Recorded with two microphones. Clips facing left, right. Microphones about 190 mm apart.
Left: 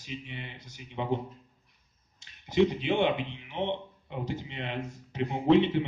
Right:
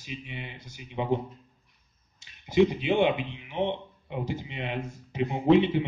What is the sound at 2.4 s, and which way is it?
Speech, 10° right (ahead or behind).